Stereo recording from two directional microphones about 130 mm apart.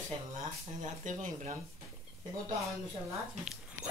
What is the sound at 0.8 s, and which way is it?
Speech, 75° right (ahead or behind).